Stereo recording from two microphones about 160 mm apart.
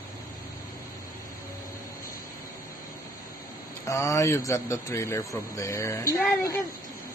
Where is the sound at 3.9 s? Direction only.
20° left (ahead or behind).